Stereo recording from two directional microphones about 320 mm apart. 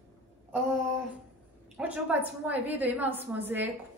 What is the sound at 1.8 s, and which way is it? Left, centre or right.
A woman's voice, centre.